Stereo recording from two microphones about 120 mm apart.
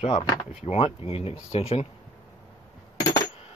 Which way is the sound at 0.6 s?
55° left (ahead or behind).